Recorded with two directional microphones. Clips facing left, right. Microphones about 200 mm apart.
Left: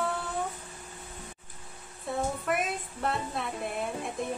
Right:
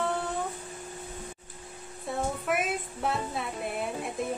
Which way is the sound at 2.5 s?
Centre (ahead or behind).